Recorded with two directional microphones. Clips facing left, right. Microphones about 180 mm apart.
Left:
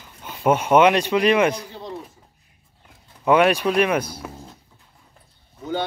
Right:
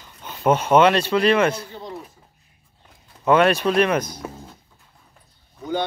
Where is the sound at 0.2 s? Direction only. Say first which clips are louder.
Even; 10° left (ahead or behind).